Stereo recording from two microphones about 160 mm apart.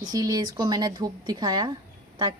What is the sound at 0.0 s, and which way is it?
Speech, 25° right (ahead or behind).